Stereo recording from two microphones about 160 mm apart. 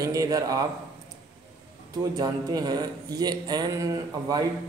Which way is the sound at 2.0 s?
25° right (ahead or behind).